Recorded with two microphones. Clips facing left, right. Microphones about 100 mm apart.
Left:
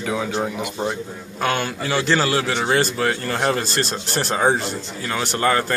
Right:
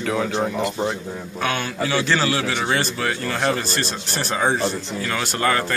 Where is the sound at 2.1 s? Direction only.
35° left (ahead or behind).